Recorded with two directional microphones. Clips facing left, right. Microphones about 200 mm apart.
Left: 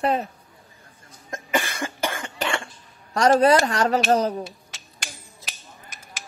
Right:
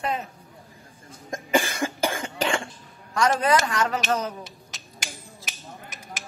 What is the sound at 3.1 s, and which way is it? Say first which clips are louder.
Speech: left 5 dB; 35° left (ahead or behind).